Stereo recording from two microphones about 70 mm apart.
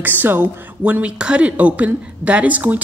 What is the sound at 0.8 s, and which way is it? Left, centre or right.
Speech, centre.